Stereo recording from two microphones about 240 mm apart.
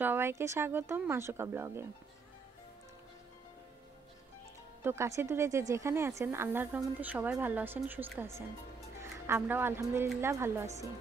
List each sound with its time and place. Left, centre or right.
0.0 s speech: centre
4.8 s speech: centre